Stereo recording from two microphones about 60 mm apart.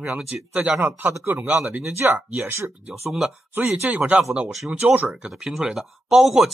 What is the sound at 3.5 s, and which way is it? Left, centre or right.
Speech, right.